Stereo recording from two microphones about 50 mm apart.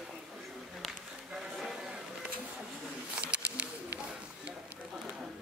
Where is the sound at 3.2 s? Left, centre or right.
Right.